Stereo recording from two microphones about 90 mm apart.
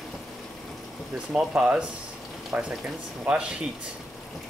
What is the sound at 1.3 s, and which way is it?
Speech, 10° right (ahead or behind).